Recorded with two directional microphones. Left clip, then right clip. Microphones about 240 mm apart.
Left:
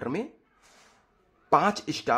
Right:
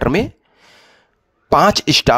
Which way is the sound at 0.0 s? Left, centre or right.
Right.